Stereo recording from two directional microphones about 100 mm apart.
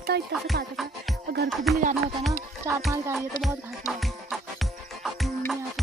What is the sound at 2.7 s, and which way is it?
Speech, 35° right (ahead or behind).